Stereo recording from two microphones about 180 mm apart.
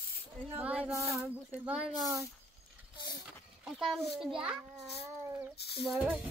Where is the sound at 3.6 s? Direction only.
Centre (ahead or behind).